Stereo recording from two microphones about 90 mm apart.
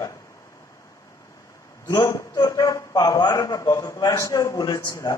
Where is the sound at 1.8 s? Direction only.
35° left (ahead or behind).